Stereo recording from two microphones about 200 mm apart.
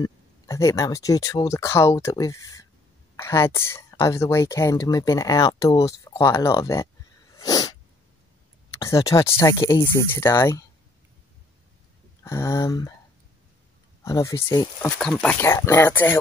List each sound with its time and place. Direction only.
0.0 s speech: 15° left (ahead or behind)
7.3 s sneeze: 20° left (ahead or behind)
8.8 s speech: 15° left (ahead or behind)
12.2 s speech: 15° left (ahead or behind)
14.0 s speech: 15° left (ahead or behind)